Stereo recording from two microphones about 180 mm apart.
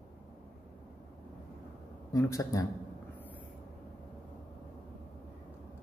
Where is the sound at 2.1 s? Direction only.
15° left (ahead or behind).